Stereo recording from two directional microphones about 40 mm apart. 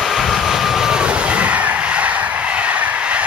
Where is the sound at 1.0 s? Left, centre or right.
Right.